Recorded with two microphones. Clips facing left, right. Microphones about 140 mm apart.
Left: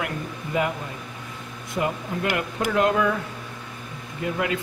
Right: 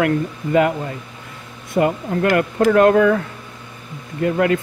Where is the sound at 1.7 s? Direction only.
55° right (ahead or behind).